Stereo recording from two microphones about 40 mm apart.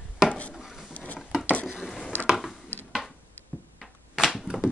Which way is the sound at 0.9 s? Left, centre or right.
Left.